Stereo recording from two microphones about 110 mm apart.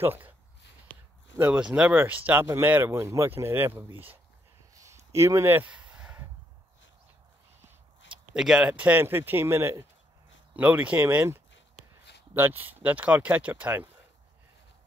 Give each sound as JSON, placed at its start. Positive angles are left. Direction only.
{"t": 0.0, "sound": "speech", "side_deg": -20}
{"t": 1.4, "sound": "speech", "side_deg": -15}
{"t": 4.7, "sound": "a sound", "side_deg": -25}
{"t": 8.4, "sound": "speech", "side_deg": -5}